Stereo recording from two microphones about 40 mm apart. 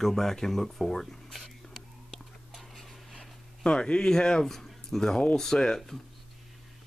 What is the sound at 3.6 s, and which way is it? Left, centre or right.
Speech, left.